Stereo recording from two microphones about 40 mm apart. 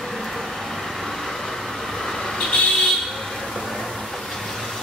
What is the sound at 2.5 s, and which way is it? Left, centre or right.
Vehicle, left.